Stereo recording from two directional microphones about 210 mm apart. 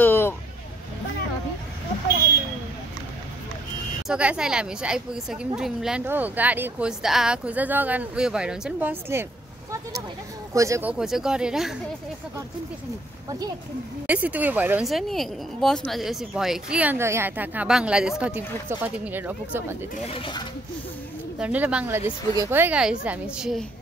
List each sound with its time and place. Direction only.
0.0 s vehicle: 10° left (ahead or behind)
4.1 s a woman's voice: 5° right (ahead or behind)
10.5 s a woman's voice: 15° right (ahead or behind)
14.0 s speech: 5° right (ahead or behind)
20.1 s speech: 25° left (ahead or behind)
21.4 s a woman's voice: 5° right (ahead or behind)